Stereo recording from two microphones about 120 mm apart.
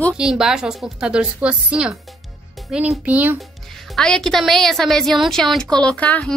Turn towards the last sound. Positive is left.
turn(degrees=10)  # may be behind; listen again after turning